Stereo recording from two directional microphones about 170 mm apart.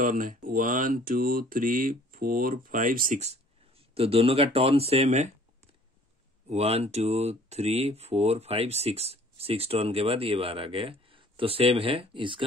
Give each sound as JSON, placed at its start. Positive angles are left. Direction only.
{"t": 0.0, "sound": "speech", "side_deg": -50}
{"t": 3.9, "sound": "speech", "side_deg": -35}
{"t": 6.5, "sound": "speech", "side_deg": -35}